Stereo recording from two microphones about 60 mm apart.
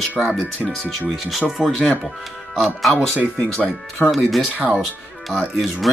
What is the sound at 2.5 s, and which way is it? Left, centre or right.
Speech, centre.